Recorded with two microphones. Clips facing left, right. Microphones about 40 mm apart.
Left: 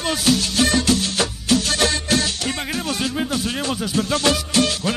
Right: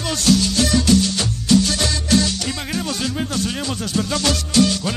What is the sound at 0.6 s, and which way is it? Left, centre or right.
Music, left.